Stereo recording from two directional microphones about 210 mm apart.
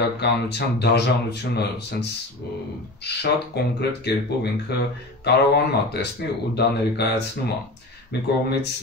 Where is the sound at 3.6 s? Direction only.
50° left (ahead or behind).